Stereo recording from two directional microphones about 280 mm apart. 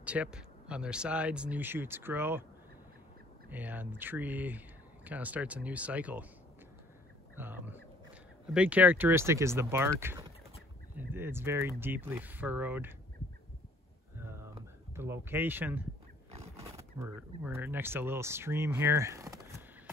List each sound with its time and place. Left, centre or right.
0.0 s speech: centre
3.4 s speech: centre
7.3 s speech: centre
15.0 s speech: centre
16.3 s horse: right
17.4 s speech: centre